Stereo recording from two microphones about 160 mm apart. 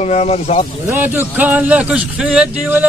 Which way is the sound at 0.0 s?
45° left (ahead or behind).